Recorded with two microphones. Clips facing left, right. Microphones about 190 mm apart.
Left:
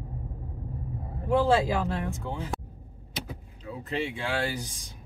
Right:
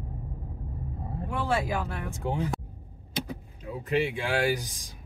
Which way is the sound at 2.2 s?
20° right (ahead or behind).